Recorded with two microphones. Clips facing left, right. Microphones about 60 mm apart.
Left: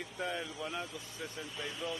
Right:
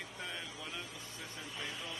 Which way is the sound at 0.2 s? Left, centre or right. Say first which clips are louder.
Left 8 dB; centre.